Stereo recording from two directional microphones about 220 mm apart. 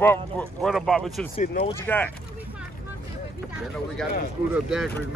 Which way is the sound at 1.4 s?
40° left (ahead or behind).